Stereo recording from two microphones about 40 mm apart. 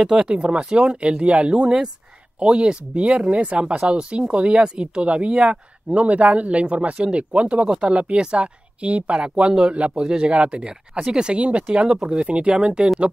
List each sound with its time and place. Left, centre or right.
0.0 s speech: right
9.2 s speech: right
11.3 s speech: right
11.6 s speech: centre